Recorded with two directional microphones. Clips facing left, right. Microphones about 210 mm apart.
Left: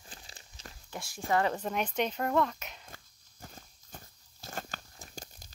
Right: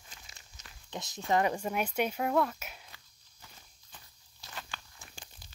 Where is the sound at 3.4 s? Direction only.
45° left (ahead or behind).